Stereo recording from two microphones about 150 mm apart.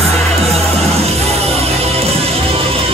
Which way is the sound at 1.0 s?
45° right (ahead or behind).